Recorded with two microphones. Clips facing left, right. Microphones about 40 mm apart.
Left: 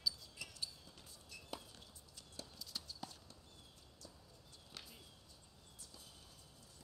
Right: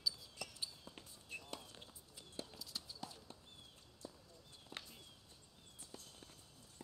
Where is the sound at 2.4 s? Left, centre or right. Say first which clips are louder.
Right 4 dB; right.